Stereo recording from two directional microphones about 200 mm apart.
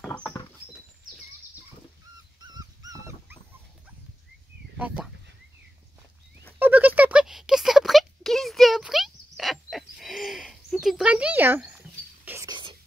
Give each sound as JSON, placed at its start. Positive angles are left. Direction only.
{"t": 2.4, "sound": "dog", "side_deg": -20}
{"t": 4.7, "sound": "speech", "side_deg": -5}
{"t": 6.6, "sound": "a sound", "side_deg": -10}
{"t": 12.3, "sound": "whispering", "side_deg": -15}